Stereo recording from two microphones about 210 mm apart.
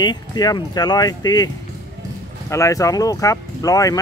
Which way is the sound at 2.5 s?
15° left (ahead or behind).